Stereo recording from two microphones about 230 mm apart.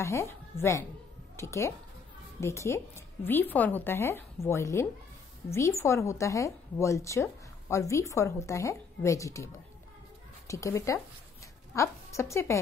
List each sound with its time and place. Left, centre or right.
0.0 s a woman's voice: centre